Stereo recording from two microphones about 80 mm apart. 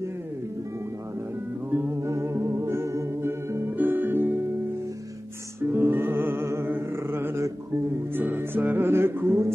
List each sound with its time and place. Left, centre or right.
1.7 s music: right
2.0 s music: right
5.6 s music: right